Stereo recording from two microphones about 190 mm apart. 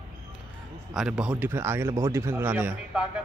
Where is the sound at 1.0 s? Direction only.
5° right (ahead or behind).